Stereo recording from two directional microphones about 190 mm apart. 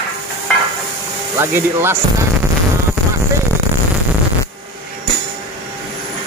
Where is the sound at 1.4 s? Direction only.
10° right (ahead or behind).